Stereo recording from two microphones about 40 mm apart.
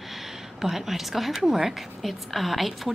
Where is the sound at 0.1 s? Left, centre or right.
Centre.